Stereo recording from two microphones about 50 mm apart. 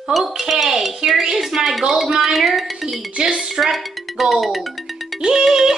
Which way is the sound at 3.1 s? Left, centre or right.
Right.